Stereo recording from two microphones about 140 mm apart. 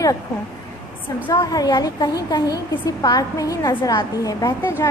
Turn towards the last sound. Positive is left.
turn(degrees=20)  # may be behind; listen again after turning